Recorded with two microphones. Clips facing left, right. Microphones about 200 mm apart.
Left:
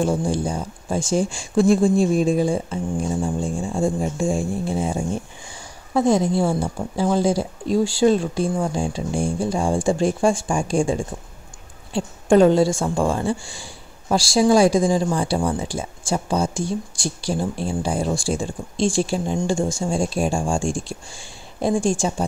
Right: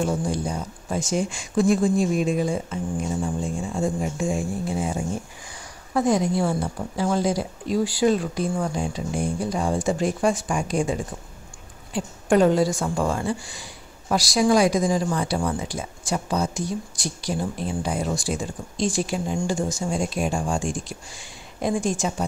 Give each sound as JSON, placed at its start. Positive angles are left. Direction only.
{"t": 0.0, "sound": "a woman's voice", "side_deg": 30}